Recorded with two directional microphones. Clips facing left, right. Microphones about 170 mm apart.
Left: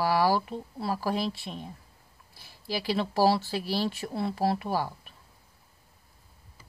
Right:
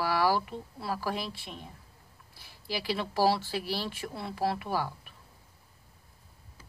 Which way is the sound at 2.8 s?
35° left (ahead or behind).